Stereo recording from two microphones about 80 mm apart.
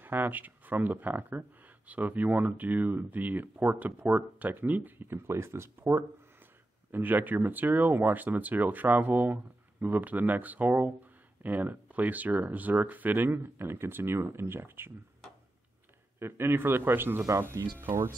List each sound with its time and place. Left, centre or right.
0.0 s speech: right
16.2 s speech: right